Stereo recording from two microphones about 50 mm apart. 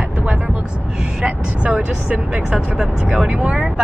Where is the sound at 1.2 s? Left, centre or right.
Right.